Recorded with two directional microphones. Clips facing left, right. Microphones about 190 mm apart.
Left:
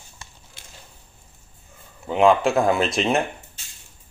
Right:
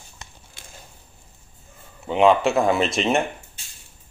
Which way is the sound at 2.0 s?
Centre (ahead or behind).